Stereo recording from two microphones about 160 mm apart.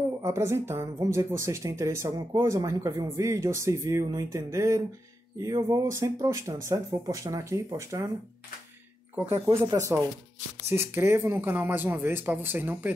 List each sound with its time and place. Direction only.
0.2 s speech: 15° right (ahead or behind)
9.7 s speech: 20° right (ahead or behind)